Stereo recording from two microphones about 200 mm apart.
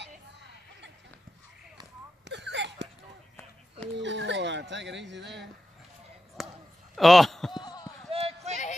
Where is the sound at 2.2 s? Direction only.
60° right (ahead or behind).